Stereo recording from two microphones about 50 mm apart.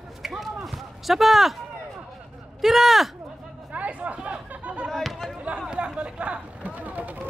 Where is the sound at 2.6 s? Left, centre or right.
Centre.